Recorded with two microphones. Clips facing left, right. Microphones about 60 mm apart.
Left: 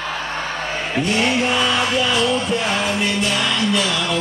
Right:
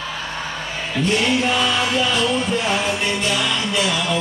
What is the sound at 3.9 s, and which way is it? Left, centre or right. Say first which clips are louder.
Speech: even; centre.